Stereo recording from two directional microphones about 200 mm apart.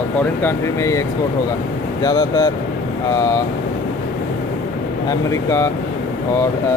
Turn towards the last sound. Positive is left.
turn(degrees=15)  # may be behind; listen again after turning